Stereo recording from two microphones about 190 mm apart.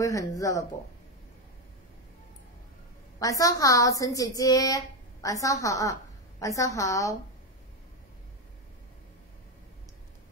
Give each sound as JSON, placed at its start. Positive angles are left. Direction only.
{"t": 0.0, "sound": "a woman's voice", "side_deg": 15}
{"t": 3.2, "sound": "a woman's voice", "side_deg": 20}